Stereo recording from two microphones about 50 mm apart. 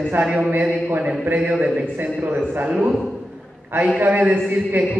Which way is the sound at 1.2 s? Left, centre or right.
Right.